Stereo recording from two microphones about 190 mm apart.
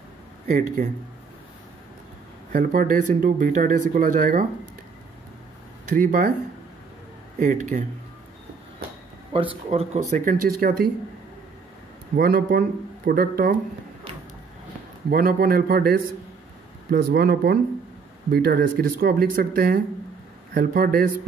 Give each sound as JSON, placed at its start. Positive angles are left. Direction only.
{"t": 0.5, "sound": "speech", "side_deg": -40}
{"t": 2.5, "sound": "speech", "side_deg": -45}
{"t": 5.9, "sound": "speech", "side_deg": -45}
{"t": 7.3, "sound": "speech", "side_deg": -40}
{"t": 9.3, "sound": "speech", "side_deg": -30}
{"t": 12.2, "sound": "speech", "side_deg": -50}
{"t": 15.0, "sound": "speech", "side_deg": -50}